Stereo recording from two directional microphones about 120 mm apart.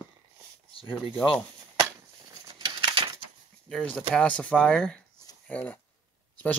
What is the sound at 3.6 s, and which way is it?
Speech, 5° left (ahead or behind).